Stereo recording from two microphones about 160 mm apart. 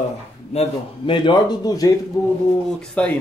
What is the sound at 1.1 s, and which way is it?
Speech, 30° left (ahead or behind).